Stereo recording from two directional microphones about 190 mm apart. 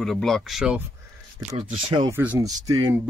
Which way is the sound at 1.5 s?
30° right (ahead or behind).